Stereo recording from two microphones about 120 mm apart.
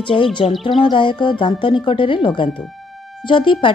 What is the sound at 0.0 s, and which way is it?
Speech, 45° left (ahead or behind).